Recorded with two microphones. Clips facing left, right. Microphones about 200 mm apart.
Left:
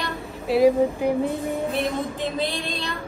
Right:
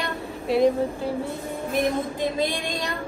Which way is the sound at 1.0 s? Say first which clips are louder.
Left 5 dB; 15° left (ahead or behind).